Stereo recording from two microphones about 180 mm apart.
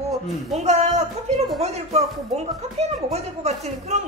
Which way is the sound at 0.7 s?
40° right (ahead or behind).